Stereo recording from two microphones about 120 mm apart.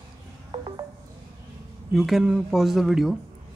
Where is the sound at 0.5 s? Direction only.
35° right (ahead or behind).